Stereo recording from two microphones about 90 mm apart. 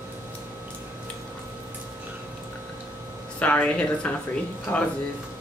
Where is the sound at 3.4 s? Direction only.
15° left (ahead or behind).